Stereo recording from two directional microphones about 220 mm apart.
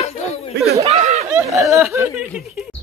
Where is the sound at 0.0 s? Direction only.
30° left (ahead or behind).